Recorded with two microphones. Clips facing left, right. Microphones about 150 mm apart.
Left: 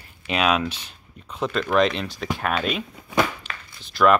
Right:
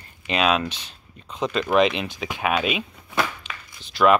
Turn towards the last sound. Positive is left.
turn(degrees=-5)  # may be behind; listen again after turning